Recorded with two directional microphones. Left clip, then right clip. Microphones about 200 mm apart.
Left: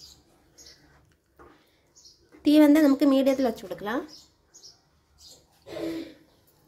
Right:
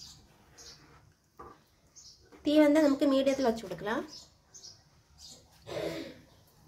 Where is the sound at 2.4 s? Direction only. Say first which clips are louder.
Left 5 dB; 35° left (ahead or behind).